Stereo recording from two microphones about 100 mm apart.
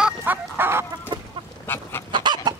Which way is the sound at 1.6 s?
20° left (ahead or behind).